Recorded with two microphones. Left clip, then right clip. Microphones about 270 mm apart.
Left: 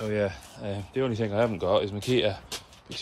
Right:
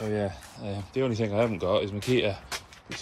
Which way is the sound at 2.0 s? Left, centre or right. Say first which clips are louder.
Even; centre.